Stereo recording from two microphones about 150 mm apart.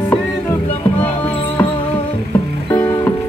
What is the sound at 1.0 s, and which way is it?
Music, 10° left (ahead or behind).